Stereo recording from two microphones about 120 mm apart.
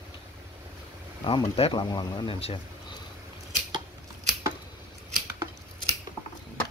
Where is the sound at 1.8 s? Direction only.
35° left (ahead or behind).